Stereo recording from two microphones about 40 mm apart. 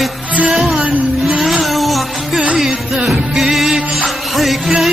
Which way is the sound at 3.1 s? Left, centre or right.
Centre.